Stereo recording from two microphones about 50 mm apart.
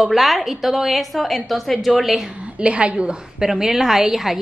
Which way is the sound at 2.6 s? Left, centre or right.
Right.